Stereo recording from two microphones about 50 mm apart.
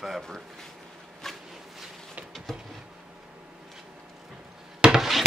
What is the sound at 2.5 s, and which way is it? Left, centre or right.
Speech, centre.